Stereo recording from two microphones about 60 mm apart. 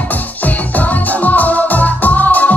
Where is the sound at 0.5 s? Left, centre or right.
Left.